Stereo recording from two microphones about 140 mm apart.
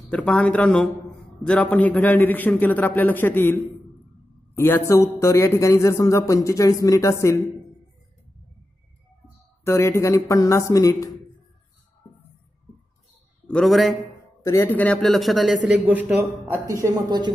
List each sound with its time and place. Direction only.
0.1 s a man's voice: 5° left (ahead or behind)
9.7 s a man's voice: 20° left (ahead or behind)
13.5 s a man's voice: centre (ahead or behind)
14.4 s a man's voice: 20° left (ahead or behind); by 16.2 s 10° right (ahead or behind)
16.8 s speech: 30° right (ahead or behind)